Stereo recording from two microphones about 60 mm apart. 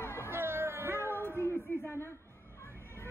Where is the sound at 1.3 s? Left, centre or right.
Right.